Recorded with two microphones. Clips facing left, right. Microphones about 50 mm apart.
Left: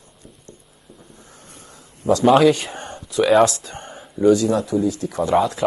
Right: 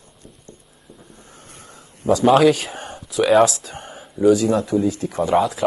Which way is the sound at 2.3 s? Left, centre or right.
Centre.